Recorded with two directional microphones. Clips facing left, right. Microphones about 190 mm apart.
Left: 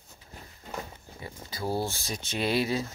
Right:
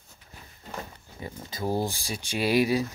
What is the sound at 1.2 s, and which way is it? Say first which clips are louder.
Speech: right 3 dB; 20° right (ahead or behind).